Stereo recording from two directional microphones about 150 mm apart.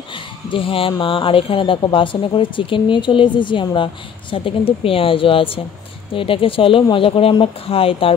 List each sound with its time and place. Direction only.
0.1 s speech: 35° left (ahead or behind)